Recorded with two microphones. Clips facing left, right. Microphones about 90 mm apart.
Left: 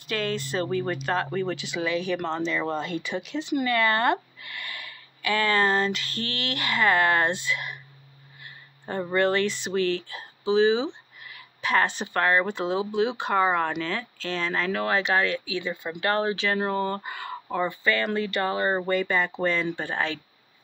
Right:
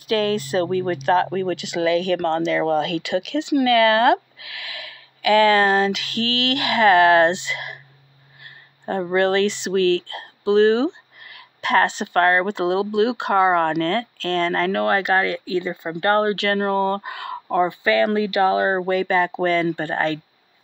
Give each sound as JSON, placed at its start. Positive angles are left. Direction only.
{"t": 0.7, "sound": "speech", "side_deg": -60}
{"t": 8.8, "sound": "speech", "side_deg": -65}
{"t": 16.0, "sound": "speech", "side_deg": -50}